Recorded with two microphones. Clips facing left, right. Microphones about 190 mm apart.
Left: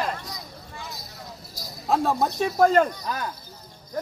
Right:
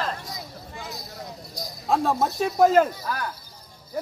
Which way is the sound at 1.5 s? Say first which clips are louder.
Even; centre (ahead or behind).